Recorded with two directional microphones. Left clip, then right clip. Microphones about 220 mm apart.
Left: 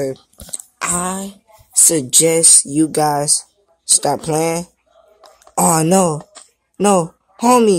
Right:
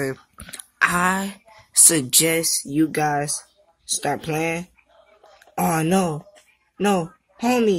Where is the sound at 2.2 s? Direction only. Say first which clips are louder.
Left 8 dB; 15° left (ahead or behind).